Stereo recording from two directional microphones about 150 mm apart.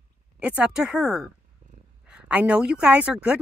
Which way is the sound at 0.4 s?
5° right (ahead or behind).